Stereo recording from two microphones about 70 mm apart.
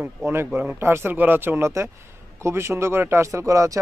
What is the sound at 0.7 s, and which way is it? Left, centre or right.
Speech, right.